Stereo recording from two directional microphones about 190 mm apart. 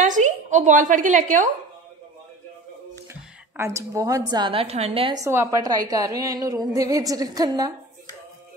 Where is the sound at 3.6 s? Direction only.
15° right (ahead or behind).